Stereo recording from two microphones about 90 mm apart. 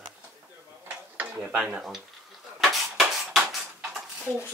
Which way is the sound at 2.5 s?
Centre (ahead or behind).